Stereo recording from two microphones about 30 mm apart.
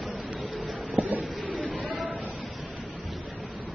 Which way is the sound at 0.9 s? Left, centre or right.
Right.